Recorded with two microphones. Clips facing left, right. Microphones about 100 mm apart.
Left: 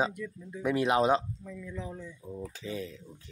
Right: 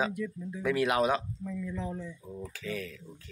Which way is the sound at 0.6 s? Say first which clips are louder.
Left 1 dB; 25° left (ahead or behind).